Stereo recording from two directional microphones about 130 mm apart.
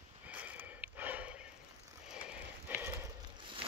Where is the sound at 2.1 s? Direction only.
10° right (ahead or behind).